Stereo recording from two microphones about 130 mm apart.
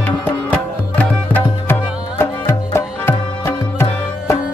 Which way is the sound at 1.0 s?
15° left (ahead or behind).